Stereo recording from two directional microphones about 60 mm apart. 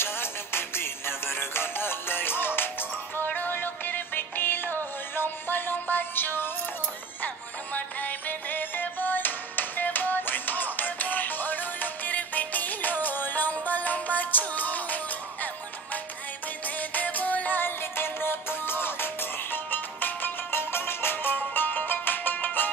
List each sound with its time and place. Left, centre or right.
0.0 s music: left
7.7 s music: left
16.6 s music: left